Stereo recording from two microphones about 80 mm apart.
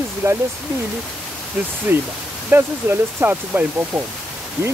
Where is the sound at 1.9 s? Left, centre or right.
Right.